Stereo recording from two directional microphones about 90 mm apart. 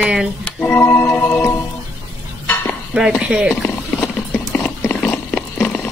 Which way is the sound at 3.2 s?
10° right (ahead or behind).